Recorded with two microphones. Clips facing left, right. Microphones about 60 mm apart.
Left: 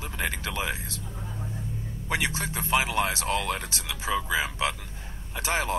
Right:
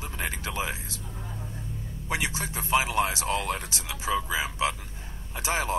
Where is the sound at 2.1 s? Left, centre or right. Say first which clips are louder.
Left 1 dB; left.